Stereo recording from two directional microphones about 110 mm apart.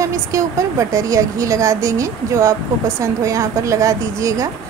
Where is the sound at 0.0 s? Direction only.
30° right (ahead or behind).